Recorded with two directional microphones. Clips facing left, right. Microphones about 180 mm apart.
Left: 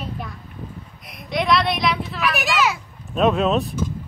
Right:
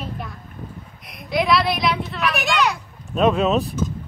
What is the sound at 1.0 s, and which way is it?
A child's voice, centre (ahead or behind).